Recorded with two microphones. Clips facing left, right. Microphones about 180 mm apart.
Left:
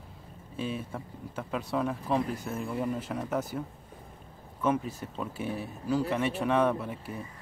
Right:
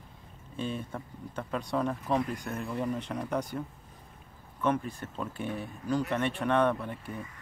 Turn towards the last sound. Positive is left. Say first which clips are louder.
# even
turn(degrees=5)  # may be behind; listen again after turning